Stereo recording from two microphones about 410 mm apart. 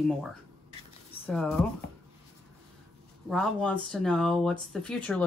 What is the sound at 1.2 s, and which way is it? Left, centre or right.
Speech, centre.